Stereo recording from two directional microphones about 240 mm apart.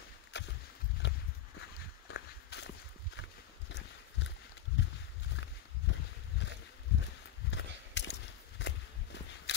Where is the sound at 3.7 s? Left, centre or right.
Left.